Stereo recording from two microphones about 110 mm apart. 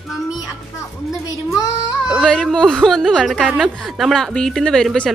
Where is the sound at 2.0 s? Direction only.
5° left (ahead or behind).